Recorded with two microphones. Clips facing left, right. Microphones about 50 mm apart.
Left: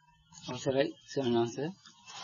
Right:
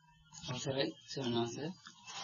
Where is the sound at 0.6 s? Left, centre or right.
Left.